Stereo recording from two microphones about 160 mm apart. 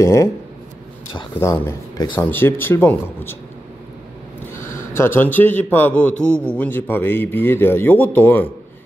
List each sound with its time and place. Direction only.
0.0 s speech: 20° left (ahead or behind)
1.4 s speech: 15° left (ahead or behind)
4.6 s a man's voice: 15° left (ahead or behind)